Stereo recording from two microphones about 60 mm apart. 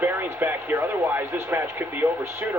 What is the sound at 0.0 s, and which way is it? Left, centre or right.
Speech, right.